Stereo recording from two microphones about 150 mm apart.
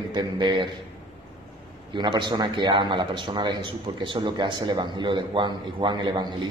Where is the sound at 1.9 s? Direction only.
30° right (ahead or behind).